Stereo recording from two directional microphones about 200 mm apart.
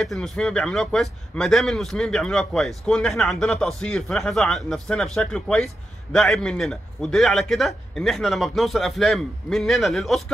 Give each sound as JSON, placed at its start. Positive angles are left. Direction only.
{"t": 0.0, "sound": "a man's voice", "side_deg": 5}